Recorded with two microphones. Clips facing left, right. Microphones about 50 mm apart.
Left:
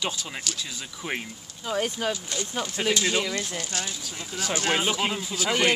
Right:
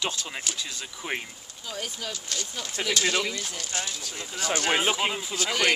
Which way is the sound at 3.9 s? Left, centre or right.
Centre.